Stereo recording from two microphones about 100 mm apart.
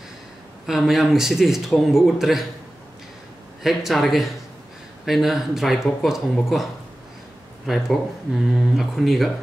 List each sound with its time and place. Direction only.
0.7 s speech: centre (ahead or behind)
3.6 s speech: centre (ahead or behind)